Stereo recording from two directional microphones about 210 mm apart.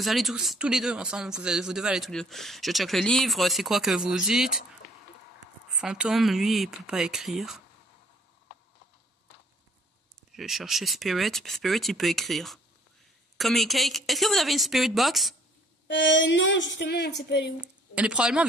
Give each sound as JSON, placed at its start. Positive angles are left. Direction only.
{"t": 0.0, "sound": "speech", "side_deg": 0}
{"t": 5.8, "sound": "speech", "side_deg": -5}
{"t": 10.3, "sound": "speech", "side_deg": 0}
{"t": 15.9, "sound": "a woman's voice", "side_deg": 60}
{"t": 17.6, "sound": "speech", "side_deg": -5}